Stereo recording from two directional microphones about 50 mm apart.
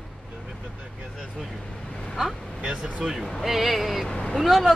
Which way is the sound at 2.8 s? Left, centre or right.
Centre.